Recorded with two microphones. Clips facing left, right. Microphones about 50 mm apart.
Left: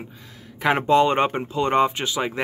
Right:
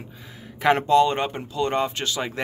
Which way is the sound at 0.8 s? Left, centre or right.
Left.